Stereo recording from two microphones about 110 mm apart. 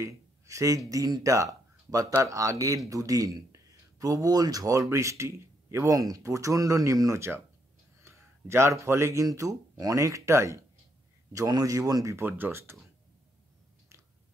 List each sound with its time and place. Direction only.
0.0 s speech: 30° right (ahead or behind)